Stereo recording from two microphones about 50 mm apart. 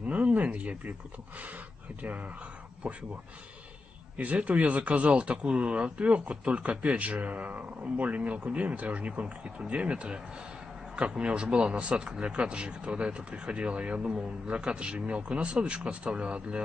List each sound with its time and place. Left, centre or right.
0.0 s a sound: right
1.4 s speech: right
2.8 s speech: centre
4.2 s speech: right